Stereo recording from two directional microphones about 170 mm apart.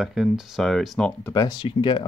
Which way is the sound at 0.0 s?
Centre (ahead or behind).